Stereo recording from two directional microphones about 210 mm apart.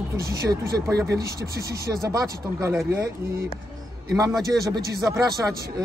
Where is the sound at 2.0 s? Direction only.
15° right (ahead or behind).